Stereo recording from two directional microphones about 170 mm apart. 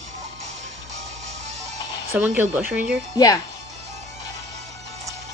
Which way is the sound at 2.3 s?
10° right (ahead or behind).